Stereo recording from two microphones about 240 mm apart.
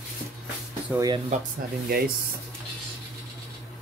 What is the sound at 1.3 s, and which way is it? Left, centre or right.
Speech, right.